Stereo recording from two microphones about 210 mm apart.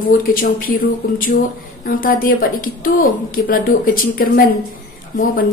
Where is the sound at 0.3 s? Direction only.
40° left (ahead or behind).